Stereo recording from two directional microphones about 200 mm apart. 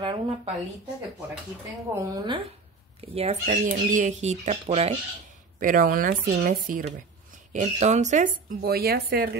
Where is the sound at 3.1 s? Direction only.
35° right (ahead or behind).